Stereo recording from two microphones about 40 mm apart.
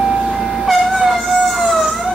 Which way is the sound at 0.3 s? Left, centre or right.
Centre.